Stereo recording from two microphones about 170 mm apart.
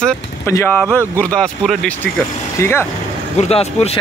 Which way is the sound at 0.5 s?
15° left (ahead or behind).